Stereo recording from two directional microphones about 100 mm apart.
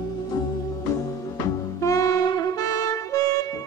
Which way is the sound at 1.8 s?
35° left (ahead or behind).